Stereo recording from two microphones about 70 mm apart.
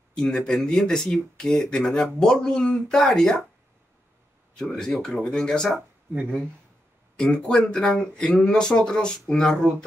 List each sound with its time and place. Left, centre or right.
0.1 s speech: centre
4.6 s speech: centre
7.2 s speech: centre